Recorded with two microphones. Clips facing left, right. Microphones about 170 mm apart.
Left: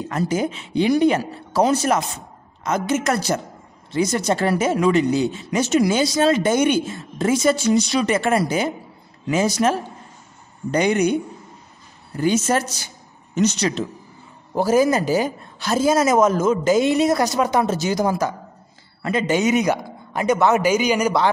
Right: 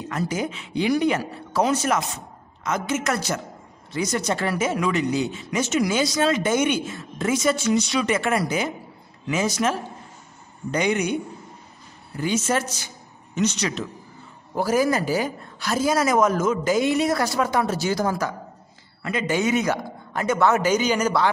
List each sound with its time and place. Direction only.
0.1 s speech: 30° left (ahead or behind)
12.2 s speech: 40° left (ahead or behind); by 18.3 s 15° left (ahead or behind)
19.0 s a man's voice: 30° left (ahead or behind); by 21.2 s 10° left (ahead or behind)